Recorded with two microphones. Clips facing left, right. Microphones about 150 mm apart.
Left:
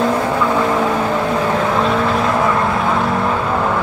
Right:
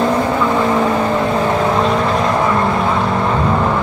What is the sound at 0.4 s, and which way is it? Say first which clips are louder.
Vehicle: right 1 dB; centre (ahead or behind).